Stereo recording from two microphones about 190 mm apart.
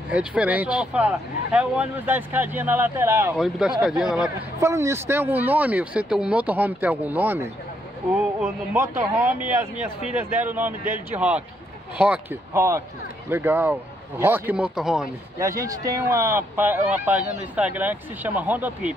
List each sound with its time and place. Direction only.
0.1 s speech: 5° right (ahead or behind)
3.3 s speech: centre (ahead or behind)
4.6 s speech: 15° right (ahead or behind)
15.3 s speech: 15° right (ahead or behind)